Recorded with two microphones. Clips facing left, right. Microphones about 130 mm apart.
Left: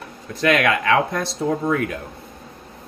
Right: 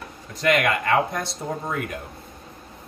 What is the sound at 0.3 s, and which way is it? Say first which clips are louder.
Speech: left 3 dB; 75° left (ahead or behind).